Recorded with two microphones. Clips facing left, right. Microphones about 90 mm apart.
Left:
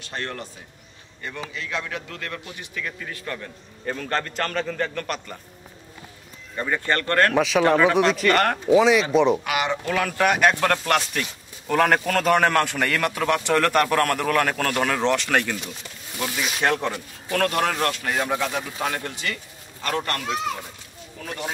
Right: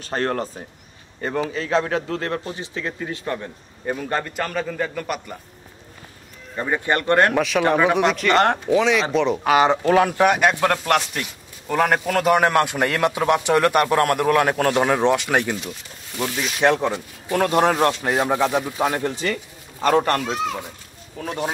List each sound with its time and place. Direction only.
0.0 s a man's voice: 40° right (ahead or behind); by 5.4 s 10° right (ahead or behind)
6.5 s a man's voice: 15° right (ahead or behind)
7.3 s a man's voice: centre (ahead or behind)
8.3 s a man's voice: 20° right (ahead or behind)
8.7 s speech: 5° left (ahead or behind)
9.4 s a man's voice: 35° right (ahead or behind)
10.0 s a man's voice: 20° right (ahead or behind)
16.6 s a man's voice: 20° right (ahead or behind)
19.8 s a man's voice: 40° right (ahead or behind)